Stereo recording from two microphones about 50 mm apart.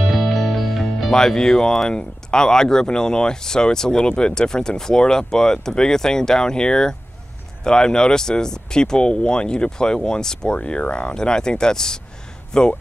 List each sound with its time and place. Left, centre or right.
0.0 s music: centre
1.1 s speech: centre